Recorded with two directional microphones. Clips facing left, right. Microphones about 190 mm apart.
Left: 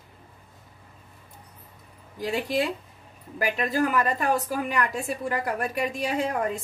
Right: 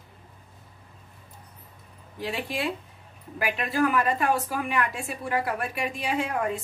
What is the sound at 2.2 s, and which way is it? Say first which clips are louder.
A woman's voice: left 4 dB; 40° left (ahead or behind).